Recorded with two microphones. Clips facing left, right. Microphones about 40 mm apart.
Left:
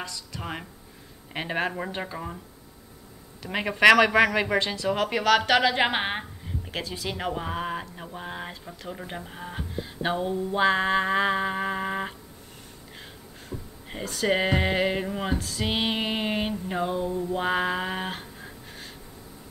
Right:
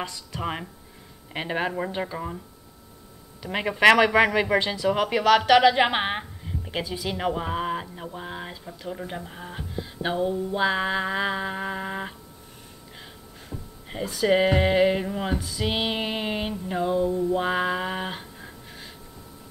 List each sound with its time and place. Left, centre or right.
0.0 s speech: right
0.4 s speech: centre
1.3 s a woman's voice: centre
3.4 s a woman's voice: centre
4.6 s a woman's voice: centre
14.1 s a woman's voice: centre
15.6 s a sound: centre
17.2 s speech: centre